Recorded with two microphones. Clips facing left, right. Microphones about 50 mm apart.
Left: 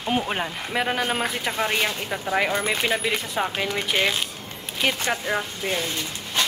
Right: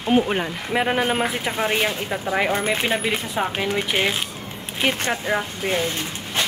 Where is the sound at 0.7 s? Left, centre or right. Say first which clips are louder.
Right 4 dB; centre.